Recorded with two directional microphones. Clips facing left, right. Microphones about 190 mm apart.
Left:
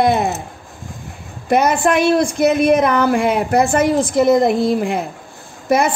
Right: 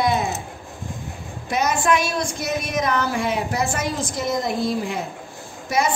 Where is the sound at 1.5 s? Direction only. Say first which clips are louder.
Left 6 dB; 60° left (ahead or behind).